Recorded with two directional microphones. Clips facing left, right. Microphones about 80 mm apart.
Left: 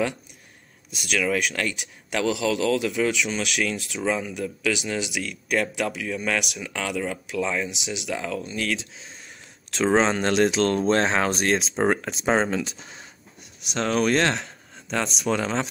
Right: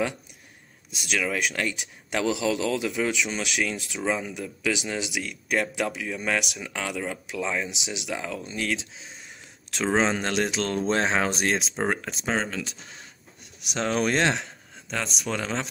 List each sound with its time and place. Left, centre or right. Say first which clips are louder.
0.9 s speech: left 2 dB; right
1.2 s speech: left 3 dB; centre
9.9 s speech: left 3 dB; centre
11.7 s speech: left 5 dB; centre
12.3 s speech: left 6 dB; centre
13.7 s speech: left 2 dB; centre
14.3 s a sound: even; centre
15.0 s speech: left 5 dB; centre